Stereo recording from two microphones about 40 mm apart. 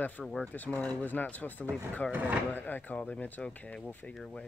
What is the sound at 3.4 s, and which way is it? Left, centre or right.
Speech, left.